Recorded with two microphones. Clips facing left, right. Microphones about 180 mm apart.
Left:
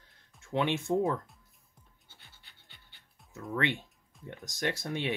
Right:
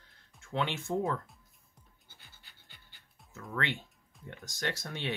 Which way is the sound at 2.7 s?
Centre (ahead or behind).